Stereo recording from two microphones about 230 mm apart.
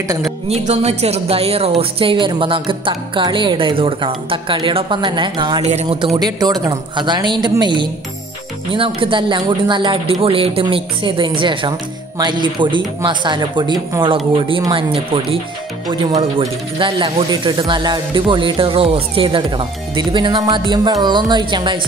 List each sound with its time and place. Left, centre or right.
0.5 s a woman's voice: right